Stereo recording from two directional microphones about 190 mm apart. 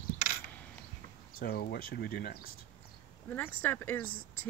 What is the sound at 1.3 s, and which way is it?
Speech, 55° left (ahead or behind).